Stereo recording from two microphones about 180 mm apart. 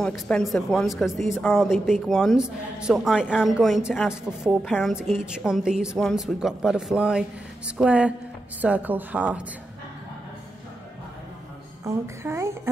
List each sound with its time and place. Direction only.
0.0 s a woman's voice: centre (ahead or behind)
11.8 s speech: 15° right (ahead or behind)